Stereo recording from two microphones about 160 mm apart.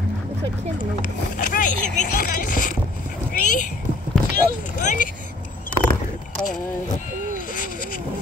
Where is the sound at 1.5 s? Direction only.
50° left (ahead or behind).